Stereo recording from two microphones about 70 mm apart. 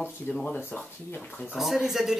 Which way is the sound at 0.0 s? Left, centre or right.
Left.